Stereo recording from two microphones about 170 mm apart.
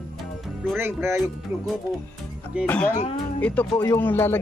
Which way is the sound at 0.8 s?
15° right (ahead or behind).